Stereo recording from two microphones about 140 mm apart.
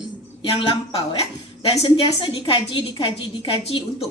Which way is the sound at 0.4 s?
40° left (ahead or behind).